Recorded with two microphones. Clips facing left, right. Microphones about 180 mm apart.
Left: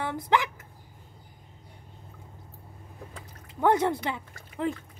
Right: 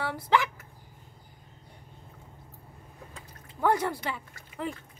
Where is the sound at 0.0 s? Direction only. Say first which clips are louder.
Even; 20° left (ahead or behind).